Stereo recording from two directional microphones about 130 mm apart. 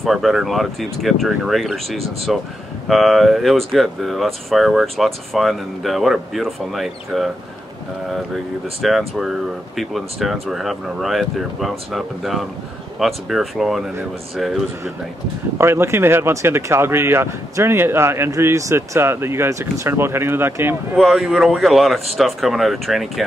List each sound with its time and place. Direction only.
0.0 s speech: centre (ahead or behind)
8.8 s speech: centre (ahead or behind)
15.5 s speech: 20° right (ahead or behind)
20.9 s speech: centre (ahead or behind)